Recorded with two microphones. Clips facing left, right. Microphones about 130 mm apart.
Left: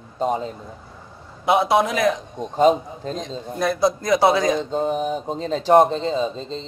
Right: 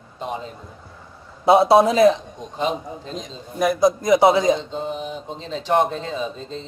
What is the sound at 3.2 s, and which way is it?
A man's voice, 15° right (ahead or behind).